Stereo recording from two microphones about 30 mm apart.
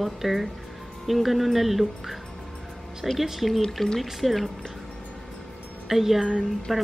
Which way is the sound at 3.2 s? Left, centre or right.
Centre.